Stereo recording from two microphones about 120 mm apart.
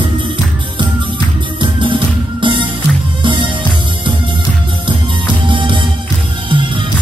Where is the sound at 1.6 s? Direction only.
45° right (ahead or behind).